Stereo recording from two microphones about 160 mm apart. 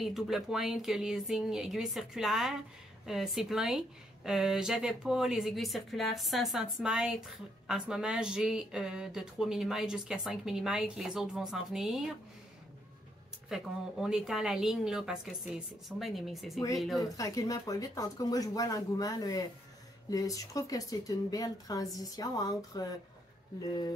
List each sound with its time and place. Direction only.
0.0 s speech: centre (ahead or behind)
13.5 s speech: centre (ahead or behind)
17.2 s speech: 20° left (ahead or behind)